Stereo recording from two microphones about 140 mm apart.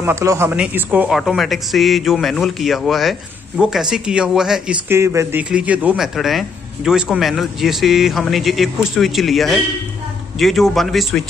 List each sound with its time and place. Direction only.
0.0 s a man's voice: 20° right (ahead or behind); by 4.7 s 5° right (ahead or behind)
4.8 s speech: 20° right (ahead or behind)
5.5 s a man's voice: 10° right (ahead or behind)